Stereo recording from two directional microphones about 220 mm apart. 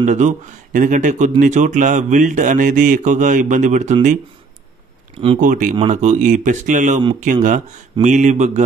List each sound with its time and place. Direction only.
0.0 s speech: 35° right (ahead or behind)
5.2 s speech: 30° right (ahead or behind)
8.0 s speech: 35° right (ahead or behind)